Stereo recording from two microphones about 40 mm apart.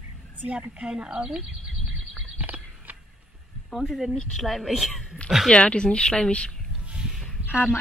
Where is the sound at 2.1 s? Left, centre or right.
Right.